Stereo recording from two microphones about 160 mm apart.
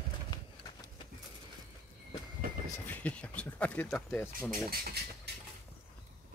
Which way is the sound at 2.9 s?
10° left (ahead or behind).